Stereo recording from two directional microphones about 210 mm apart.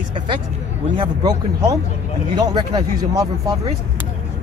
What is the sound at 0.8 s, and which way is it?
Speech, 25° right (ahead or behind).